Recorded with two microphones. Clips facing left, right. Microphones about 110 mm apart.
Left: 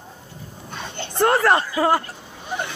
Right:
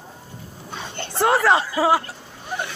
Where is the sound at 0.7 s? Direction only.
5° right (ahead or behind).